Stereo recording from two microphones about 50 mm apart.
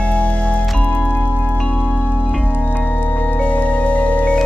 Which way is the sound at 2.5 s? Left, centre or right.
Left.